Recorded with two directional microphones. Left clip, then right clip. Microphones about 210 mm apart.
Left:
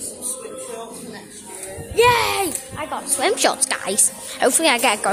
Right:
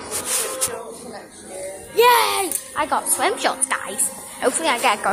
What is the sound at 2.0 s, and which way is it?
Speech, 10° left (ahead or behind).